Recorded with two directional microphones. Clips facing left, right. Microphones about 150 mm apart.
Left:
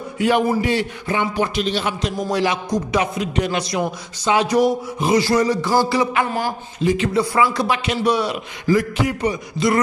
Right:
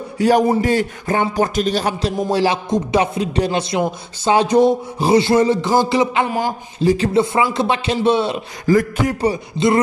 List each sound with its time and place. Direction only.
0.2 s a man's voice: 40° right (ahead or behind); by 6.5 s 20° right (ahead or behind)
6.8 s a man's voice: 35° right (ahead or behind)
7.3 s a man's voice: 25° right (ahead or behind)
8.6 s speech: 45° right (ahead or behind)
9.2 s a man's voice: 30° right (ahead or behind)